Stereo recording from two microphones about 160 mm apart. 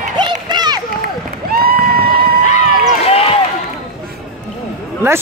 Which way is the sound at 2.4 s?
50° left (ahead or behind).